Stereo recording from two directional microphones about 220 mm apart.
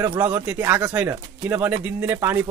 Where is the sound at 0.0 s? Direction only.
10° right (ahead or behind).